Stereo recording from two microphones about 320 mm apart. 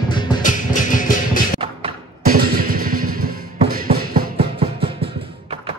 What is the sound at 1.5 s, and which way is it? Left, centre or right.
Music, right.